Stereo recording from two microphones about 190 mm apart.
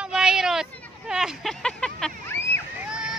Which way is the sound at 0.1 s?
5° right (ahead or behind).